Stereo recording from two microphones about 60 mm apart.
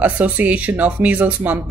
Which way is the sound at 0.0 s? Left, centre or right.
Right.